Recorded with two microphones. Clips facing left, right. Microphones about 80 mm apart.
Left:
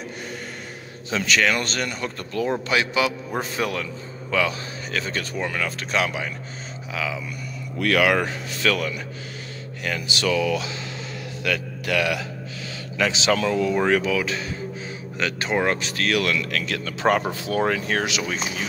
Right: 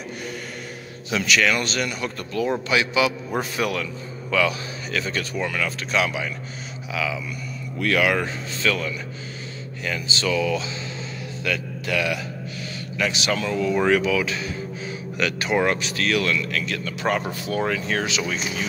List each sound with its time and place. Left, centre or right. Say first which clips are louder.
1.1 s a man's voice: even; left
3.3 s a man's voice: right 1 dB; left
7.8 s a man's voice: left 1 dB; left
12.9 s speech: left 3 dB; left
13.8 s a man's voice: right 1 dB; left
14.9 s speech: right 3 dB; left
17.3 s speech: left 1 dB; left
17.6 s speech: left 2 dB; left